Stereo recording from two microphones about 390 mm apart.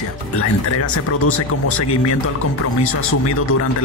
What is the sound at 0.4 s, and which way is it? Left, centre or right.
Speech, left.